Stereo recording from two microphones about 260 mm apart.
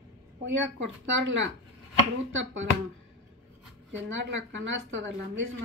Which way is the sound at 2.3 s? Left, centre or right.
Right.